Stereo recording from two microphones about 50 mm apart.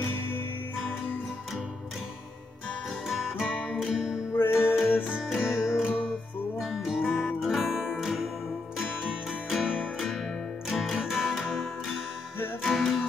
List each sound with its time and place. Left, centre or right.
3.8 s music: centre
4.4 s music: left
4.7 s music: left
5.3 s music: centre